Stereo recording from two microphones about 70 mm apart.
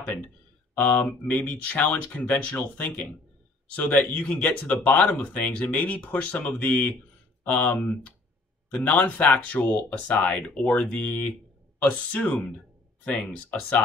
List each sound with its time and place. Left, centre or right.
0.7 s speech: left